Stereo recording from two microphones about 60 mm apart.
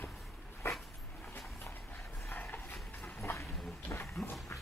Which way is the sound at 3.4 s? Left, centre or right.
Centre.